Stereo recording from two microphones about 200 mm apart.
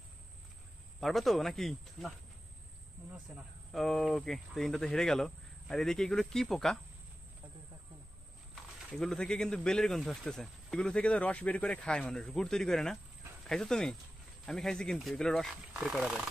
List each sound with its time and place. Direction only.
1.0 s speech: centre (ahead or behind)
3.7 s speech: centre (ahead or behind)
8.9 s speech: 5° left (ahead or behind)